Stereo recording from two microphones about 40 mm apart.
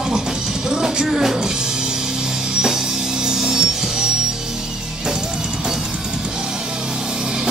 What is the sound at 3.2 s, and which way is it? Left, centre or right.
Music, centre.